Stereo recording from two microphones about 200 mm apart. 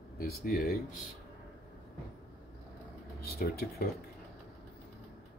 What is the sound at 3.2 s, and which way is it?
Speech, 50° left (ahead or behind).